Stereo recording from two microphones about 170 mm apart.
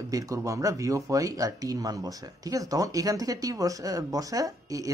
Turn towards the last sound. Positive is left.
turn(degrees=-20)  # may be behind; listen again after turning